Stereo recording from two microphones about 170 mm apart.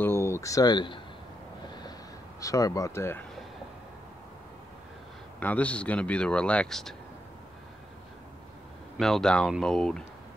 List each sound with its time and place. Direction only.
0.0 s a sound: 15° left (ahead or behind)
2.4 s speech: 20° left (ahead or behind)
5.4 s speech: 10° left (ahead or behind)
8.9 s speech: centre (ahead or behind)